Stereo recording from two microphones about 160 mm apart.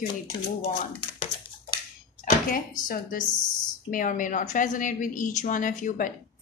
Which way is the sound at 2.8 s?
60° left (ahead or behind).